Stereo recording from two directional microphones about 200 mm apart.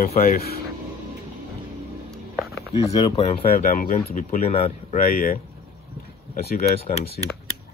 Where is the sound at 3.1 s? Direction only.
30° left (ahead or behind).